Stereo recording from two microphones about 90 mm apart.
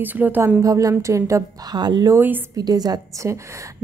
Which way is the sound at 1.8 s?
50° right (ahead or behind).